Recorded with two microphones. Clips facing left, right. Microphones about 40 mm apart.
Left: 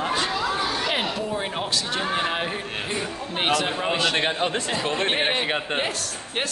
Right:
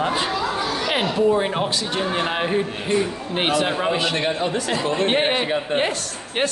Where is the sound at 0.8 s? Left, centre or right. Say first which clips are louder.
Right 4 dB; centre.